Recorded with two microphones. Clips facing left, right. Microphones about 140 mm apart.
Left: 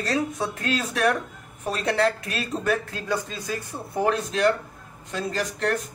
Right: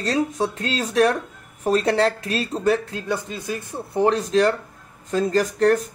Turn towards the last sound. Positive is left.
turn(degrees=-40)  # may be behind; listen again after turning